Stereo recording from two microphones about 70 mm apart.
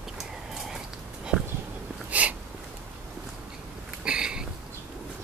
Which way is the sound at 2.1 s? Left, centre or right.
Right.